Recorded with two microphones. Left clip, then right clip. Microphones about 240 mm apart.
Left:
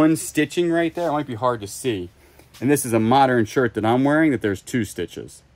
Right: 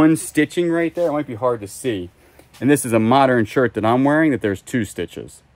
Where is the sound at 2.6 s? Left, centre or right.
Right.